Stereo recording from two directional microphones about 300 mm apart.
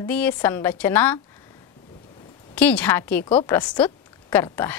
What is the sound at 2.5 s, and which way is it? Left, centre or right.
A woman's voice, centre.